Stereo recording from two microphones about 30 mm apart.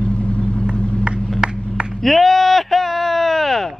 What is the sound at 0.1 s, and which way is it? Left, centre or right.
Vehicle, left.